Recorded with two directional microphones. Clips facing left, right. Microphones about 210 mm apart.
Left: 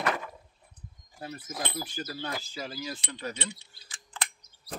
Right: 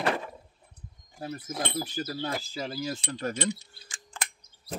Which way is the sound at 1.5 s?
25° right (ahead or behind).